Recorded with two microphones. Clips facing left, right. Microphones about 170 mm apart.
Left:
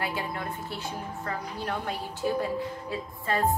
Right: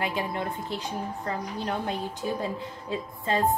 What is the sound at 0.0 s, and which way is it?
A woman's voice, 20° right (ahead or behind).